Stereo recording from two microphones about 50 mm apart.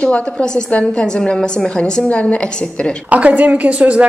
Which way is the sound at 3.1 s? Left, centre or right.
Right.